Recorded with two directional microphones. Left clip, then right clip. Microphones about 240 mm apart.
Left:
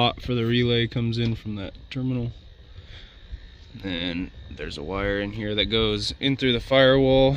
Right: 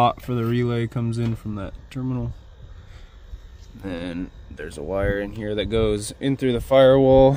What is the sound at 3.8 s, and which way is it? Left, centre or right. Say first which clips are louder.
Speech: left 1 dB; centre.